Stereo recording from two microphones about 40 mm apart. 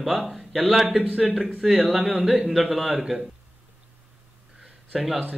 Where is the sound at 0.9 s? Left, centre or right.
Right.